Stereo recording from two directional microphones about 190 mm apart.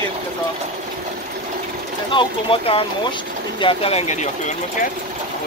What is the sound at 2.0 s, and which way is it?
Speech, 25° left (ahead or behind).